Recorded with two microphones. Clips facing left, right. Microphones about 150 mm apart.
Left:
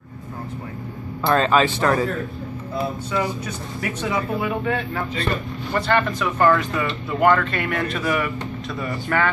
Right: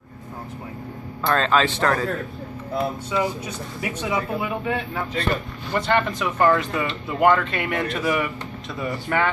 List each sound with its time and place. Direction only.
1.2 s speech: 5° left (ahead or behind)
3.1 s speech: 15° right (ahead or behind)
5.8 s speech: 20° right (ahead or behind)